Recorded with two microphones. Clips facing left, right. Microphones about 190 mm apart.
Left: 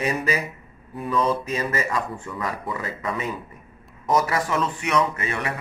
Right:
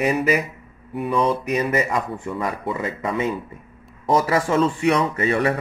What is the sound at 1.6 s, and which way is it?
Speech, 20° right (ahead or behind).